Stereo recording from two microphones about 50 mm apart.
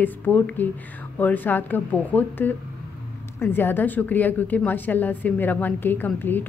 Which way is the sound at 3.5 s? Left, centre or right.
Left.